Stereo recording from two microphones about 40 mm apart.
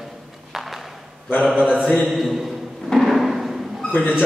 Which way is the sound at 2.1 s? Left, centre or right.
Centre.